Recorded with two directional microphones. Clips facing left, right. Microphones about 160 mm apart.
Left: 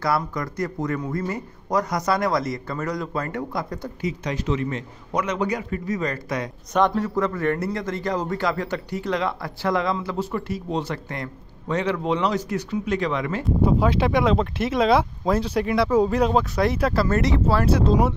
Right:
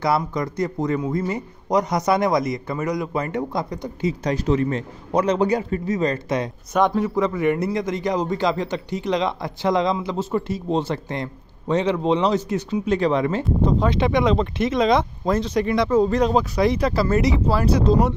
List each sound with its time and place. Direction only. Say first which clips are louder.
0.0 s a man's voice: right 3 dB; 20° right (ahead or behind)
4.0 s a man's voice: right 5 dB; 40° right (ahead or behind)
6.7 s a man's voice: right 1 dB; 10° right (ahead or behind); by 13.5 s 30° right (ahead or behind)
13.6 s speech: left 1 dB; 10° left (ahead or behind)